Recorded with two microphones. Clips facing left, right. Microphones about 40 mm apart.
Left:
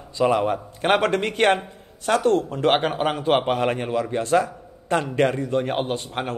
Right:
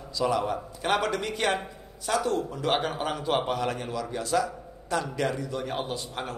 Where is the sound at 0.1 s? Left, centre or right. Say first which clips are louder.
Left 6 dB; left.